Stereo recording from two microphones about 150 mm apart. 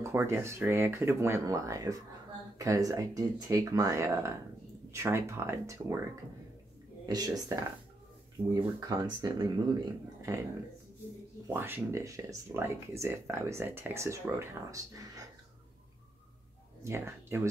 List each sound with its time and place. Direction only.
0.0 s speech: 15° right (ahead or behind)
7.1 s speech: 25° right (ahead or behind)
8.7 s speech: 25° right (ahead or behind)
11.4 s speech: 15° right (ahead or behind)
16.8 s speech: 15° right (ahead or behind)